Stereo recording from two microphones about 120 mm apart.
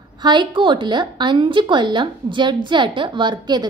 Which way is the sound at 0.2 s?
40° right (ahead or behind).